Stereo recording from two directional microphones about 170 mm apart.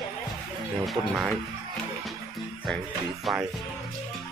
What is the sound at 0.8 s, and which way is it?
Speech, centre (ahead or behind).